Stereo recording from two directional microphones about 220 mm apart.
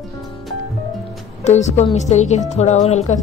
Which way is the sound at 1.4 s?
30° left (ahead or behind).